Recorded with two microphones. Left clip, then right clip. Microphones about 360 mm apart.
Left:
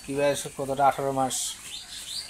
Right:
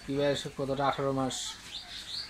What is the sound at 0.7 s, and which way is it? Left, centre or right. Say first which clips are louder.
Speech: left 7 dB; left.